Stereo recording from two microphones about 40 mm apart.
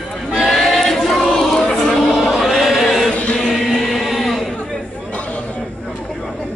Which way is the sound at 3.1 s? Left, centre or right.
Left.